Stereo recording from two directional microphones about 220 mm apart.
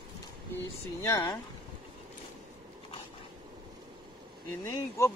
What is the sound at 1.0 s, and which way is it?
Speech, 15° left (ahead or behind).